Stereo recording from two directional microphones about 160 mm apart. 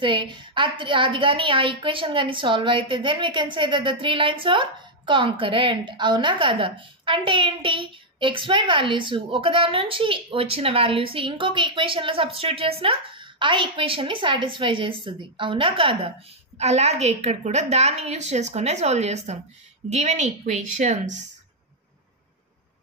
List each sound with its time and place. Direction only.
0.0 s a woman's voice: 30° right (ahead or behind); by 21.3 s 50° right (ahead or behind)